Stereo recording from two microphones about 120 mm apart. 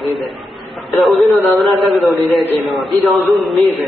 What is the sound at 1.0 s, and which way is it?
A man's voice, centre (ahead or behind).